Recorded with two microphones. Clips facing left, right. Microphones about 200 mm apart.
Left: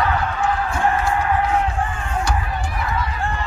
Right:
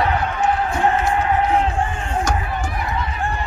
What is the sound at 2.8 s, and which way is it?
Run, 20° right (ahead or behind).